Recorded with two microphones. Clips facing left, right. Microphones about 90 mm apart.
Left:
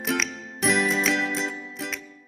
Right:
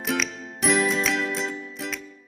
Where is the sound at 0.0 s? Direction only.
Centre (ahead or behind).